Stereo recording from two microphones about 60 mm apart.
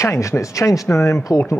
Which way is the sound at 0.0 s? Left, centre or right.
Left.